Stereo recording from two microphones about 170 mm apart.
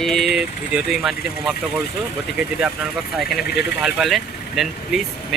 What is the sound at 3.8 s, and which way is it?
Speech, centre (ahead or behind).